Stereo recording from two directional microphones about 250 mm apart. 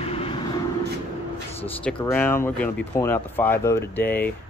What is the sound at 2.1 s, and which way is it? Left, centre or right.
Speech, centre.